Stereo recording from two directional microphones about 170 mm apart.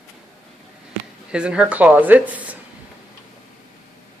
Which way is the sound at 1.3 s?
5° right (ahead or behind).